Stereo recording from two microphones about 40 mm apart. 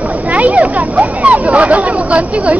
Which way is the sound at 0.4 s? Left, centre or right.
Right.